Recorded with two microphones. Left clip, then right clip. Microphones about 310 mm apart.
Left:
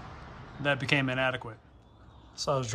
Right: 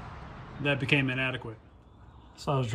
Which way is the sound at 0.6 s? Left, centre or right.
Centre.